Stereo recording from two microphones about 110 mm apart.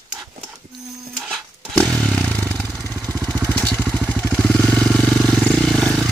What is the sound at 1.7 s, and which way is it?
Motorcycle, 5° left (ahead or behind).